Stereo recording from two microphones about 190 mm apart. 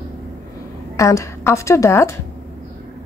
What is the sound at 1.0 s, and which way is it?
A woman's voice, 15° left (ahead or behind).